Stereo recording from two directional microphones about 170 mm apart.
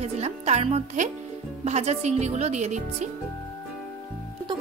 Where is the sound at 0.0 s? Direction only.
40° right (ahead or behind).